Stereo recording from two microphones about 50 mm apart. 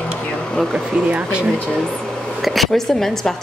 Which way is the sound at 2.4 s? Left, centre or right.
Centre.